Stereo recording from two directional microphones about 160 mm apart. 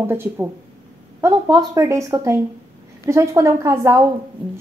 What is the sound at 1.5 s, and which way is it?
A woman's voice, 25° right (ahead or behind).